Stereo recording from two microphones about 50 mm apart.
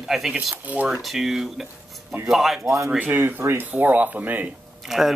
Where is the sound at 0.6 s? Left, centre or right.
Right.